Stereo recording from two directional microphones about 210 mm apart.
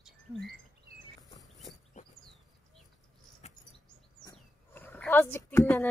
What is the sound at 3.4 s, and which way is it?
Chirp, 30° left (ahead or behind).